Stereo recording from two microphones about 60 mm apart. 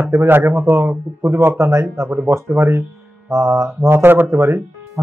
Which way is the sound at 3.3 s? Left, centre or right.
Right.